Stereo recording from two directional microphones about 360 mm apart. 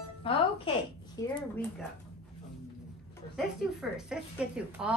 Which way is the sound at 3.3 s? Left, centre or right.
Centre.